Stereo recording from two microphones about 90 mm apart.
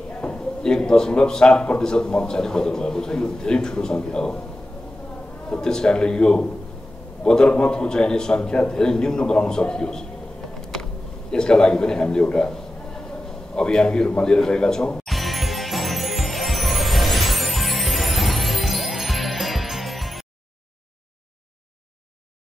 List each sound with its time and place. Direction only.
0.2 s a man's voice: 10° left (ahead or behind)
5.5 s a man's voice: 10° left (ahead or behind)
11.3 s a man's voice: 10° left (ahead or behind)
13.6 s music: 10° left (ahead or behind)